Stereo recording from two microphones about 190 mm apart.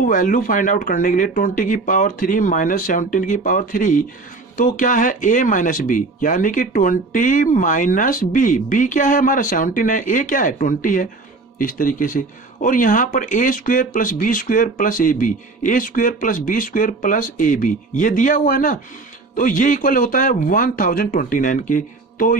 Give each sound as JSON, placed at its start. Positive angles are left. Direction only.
{"t": 0.0, "sound": "speech", "side_deg": 45}